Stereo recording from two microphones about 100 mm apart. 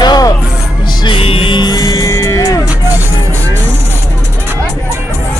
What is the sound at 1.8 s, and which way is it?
Music, 35° left (ahead or behind).